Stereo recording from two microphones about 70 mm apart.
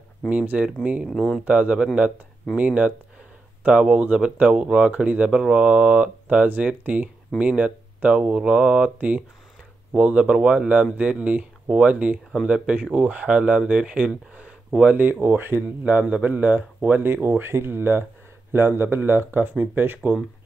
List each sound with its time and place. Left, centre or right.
0.3 s speech: centre
15.0 s speech: right
15.8 s speech: centre